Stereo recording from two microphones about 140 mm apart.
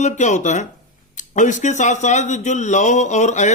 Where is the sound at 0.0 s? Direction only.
60° left (ahead or behind).